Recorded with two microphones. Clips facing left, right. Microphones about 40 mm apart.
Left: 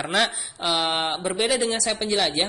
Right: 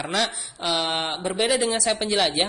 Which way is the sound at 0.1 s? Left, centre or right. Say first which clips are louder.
Left 3 dB; centre.